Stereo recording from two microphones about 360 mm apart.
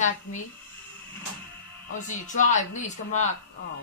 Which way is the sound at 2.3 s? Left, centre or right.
Centre.